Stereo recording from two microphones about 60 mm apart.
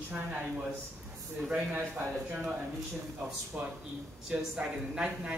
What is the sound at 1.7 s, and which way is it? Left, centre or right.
Speech, right.